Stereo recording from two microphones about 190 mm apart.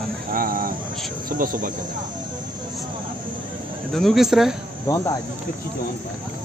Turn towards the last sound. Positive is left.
turn(degrees=15)  # may be behind; listen again after turning